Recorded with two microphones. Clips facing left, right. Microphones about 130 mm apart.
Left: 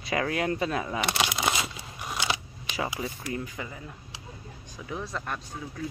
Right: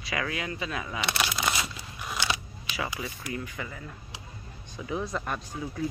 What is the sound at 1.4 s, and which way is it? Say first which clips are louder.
Crumpling: left 2 dB; 25° left (ahead or behind).